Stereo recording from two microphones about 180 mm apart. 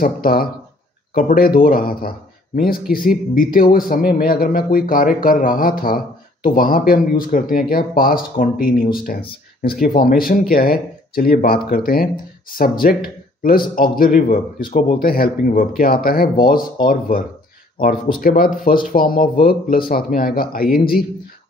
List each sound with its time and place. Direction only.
0.0 s speech: 55° left (ahead or behind)